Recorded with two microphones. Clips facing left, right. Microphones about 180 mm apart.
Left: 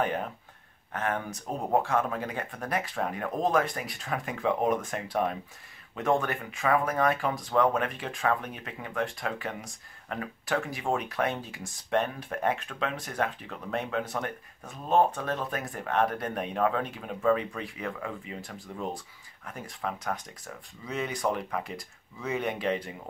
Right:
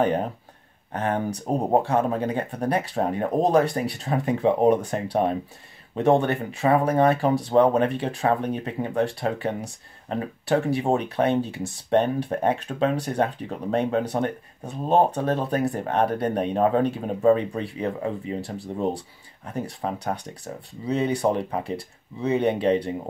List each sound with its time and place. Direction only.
0.0 s speech: 30° right (ahead or behind)